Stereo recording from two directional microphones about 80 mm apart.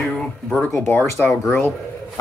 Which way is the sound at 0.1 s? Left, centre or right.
Centre.